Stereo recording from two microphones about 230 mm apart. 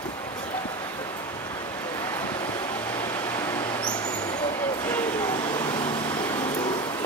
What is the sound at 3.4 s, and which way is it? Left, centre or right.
Mouse, centre.